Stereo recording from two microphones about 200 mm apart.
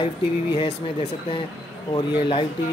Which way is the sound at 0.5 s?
25° left (ahead or behind).